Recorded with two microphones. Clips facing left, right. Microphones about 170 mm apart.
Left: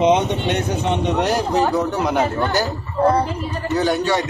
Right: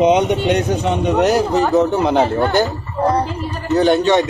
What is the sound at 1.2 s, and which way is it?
Speech, 25° right (ahead or behind).